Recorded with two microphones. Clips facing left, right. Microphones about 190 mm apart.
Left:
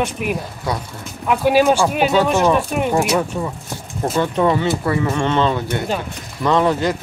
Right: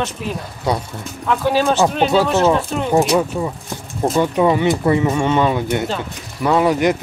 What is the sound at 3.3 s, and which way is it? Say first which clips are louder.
Speech: right 2 dB; 10° right (ahead or behind).